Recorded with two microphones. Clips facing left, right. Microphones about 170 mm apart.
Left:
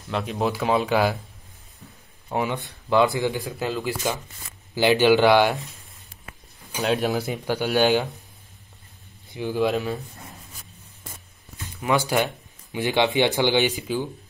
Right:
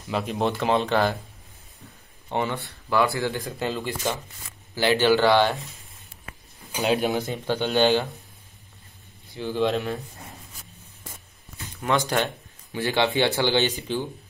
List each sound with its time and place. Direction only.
0.1 s speech: centre (ahead or behind)
2.2 s speech: 5° left (ahead or behind)
2.5 s speech: 20° left (ahead or behind)
3.4 s speech: centre (ahead or behind)
6.8 s speech: centre (ahead or behind)
7.2 s speech: 10° left (ahead or behind)
9.3 s speech: 10° left (ahead or behind)
12.7 s speech: 15° left (ahead or behind)